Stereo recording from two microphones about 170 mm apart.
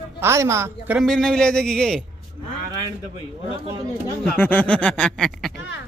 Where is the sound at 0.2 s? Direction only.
15° right (ahead or behind).